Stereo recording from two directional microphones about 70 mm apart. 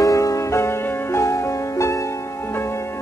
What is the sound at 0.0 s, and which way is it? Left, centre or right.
Music, left.